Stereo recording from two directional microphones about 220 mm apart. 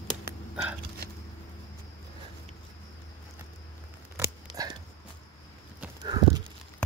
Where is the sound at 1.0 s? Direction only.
45° right (ahead or behind).